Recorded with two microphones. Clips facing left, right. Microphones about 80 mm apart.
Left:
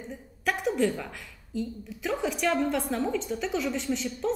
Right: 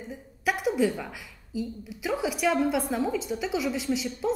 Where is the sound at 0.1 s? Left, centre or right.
Centre.